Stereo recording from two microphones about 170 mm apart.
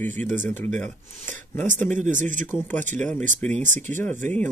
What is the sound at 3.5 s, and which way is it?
Speech, 45° right (ahead or behind).